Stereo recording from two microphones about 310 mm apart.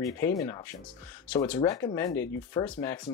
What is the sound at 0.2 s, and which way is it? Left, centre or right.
Speech, centre.